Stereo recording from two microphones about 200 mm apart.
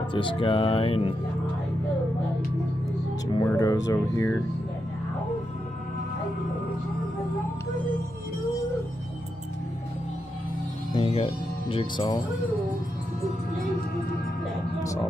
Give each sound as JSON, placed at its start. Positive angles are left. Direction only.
{"t": 0.1, "sound": "speech", "side_deg": 25}
{"t": 3.4, "sound": "speech", "side_deg": 15}
{"t": 11.0, "sound": "speech", "side_deg": 25}
{"t": 14.8, "sound": "speech", "side_deg": 15}